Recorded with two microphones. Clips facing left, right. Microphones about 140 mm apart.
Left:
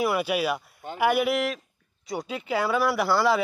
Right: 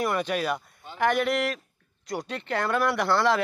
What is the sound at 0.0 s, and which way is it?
Speech, 5° left (ahead or behind).